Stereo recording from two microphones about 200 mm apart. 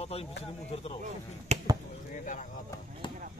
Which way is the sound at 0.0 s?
30° left (ahead or behind).